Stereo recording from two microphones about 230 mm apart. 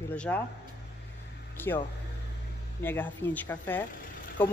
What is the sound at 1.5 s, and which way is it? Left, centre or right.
Speech, centre.